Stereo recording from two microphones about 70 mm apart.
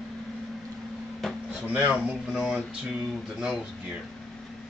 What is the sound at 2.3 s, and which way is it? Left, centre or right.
Speech, centre.